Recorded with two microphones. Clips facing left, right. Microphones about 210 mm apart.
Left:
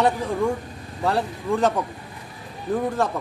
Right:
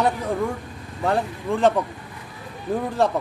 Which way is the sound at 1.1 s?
40° left (ahead or behind).